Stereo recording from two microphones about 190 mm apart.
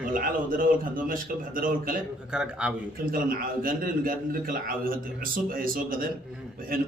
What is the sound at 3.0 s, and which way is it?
A man's voice, 50° right (ahead or behind).